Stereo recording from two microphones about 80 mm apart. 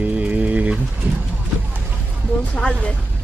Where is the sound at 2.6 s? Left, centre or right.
Centre.